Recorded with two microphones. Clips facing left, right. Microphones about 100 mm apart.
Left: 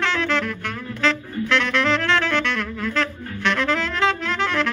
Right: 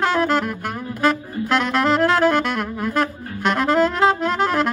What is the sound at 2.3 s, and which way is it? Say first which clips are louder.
Saxophone: right 4 dB; 10° right (ahead or behind).